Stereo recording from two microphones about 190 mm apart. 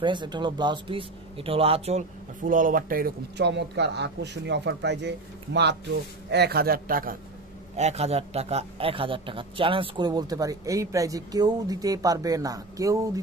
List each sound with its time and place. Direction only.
0.0 s speech: 25° right (ahead or behind); by 7.2 s 50° right (ahead or behind)
7.7 s a man's voice: 35° right (ahead or behind); by 13.2 s 15° right (ahead or behind)